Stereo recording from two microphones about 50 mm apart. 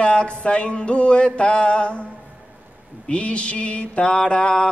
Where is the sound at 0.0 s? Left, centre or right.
Left.